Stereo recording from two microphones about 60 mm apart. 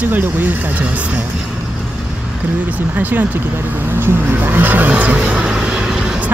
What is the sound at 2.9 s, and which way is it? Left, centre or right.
Speech, right.